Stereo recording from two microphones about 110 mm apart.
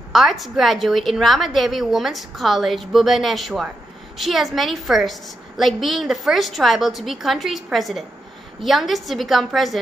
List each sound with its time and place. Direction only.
0.1 s a woman's voice: centre (ahead or behind)